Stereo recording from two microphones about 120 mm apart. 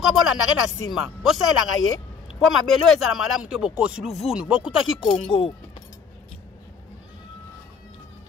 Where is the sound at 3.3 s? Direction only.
5° right (ahead or behind).